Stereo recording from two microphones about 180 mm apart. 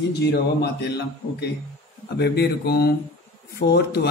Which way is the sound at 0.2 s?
70° left (ahead or behind).